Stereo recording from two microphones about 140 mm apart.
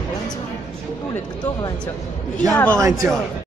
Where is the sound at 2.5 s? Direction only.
10° left (ahead or behind).